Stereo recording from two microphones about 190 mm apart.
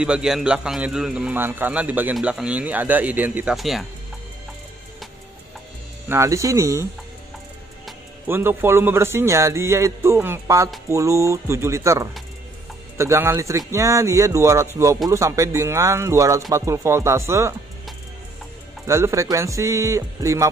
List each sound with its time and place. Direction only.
0.0 s a man's voice: 5° right (ahead or behind)
6.0 s a man's voice: 15° right (ahead or behind)
8.3 s a man's voice: 10° right (ahead or behind)
18.9 s a man's voice: 15° right (ahead or behind)